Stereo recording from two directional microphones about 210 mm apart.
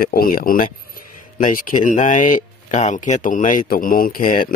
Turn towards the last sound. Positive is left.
turn(degrees=45)  # may be behind; listen again after turning